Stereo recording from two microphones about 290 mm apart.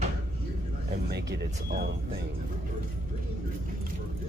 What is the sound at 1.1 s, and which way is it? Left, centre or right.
Speech, right.